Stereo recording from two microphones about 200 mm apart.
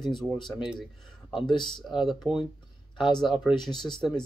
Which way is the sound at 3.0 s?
20° left (ahead or behind).